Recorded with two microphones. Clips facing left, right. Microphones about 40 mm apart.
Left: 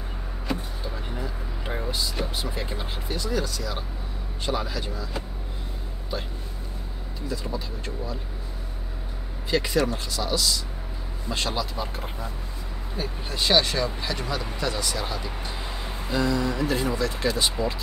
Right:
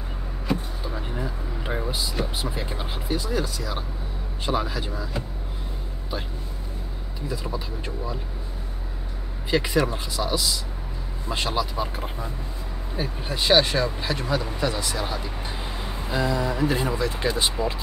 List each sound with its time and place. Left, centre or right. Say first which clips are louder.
0.5 s a sound: right 3 dB; centre
4.4 s speech: right 2 dB; centre
7.2 s speech: right 1 dB; centre
9.5 s speech: right 1 dB; centre
14.2 s speech: right 4 dB; centre